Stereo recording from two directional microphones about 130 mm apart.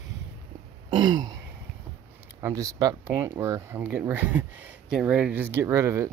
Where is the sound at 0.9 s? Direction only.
35° right (ahead or behind).